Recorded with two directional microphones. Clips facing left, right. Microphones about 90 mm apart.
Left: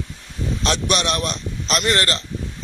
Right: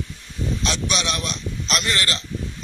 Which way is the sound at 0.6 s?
50° left (ahead or behind).